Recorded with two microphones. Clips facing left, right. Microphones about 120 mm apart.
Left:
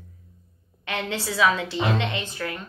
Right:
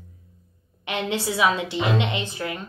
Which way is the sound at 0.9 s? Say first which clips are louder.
Right 3 dB; 20° right (ahead or behind).